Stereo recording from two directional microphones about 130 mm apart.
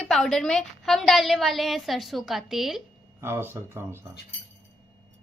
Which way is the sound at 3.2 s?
20° right (ahead or behind).